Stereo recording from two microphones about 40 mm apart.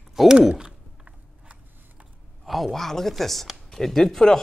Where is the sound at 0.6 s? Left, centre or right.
Centre.